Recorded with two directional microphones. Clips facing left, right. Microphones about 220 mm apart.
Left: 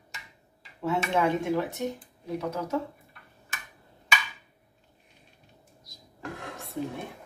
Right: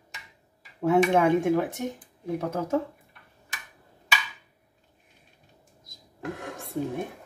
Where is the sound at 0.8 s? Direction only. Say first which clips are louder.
Right 6 dB; 50° right (ahead or behind).